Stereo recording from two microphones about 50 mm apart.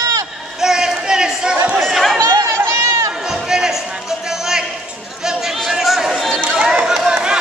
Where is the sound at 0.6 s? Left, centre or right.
Centre.